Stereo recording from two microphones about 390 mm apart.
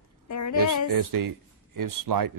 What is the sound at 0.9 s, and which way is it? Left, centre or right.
Speech, right.